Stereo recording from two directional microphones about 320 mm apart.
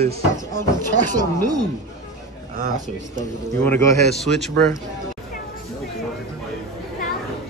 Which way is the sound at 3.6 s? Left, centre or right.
Centre.